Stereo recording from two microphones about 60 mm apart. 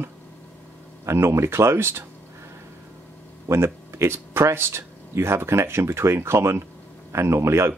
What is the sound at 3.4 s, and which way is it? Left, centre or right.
Speech, right.